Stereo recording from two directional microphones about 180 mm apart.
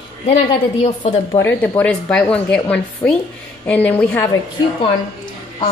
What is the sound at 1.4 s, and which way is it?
A woman's voice, 10° left (ahead or behind).